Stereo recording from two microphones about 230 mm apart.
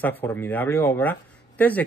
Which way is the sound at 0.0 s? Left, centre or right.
Centre.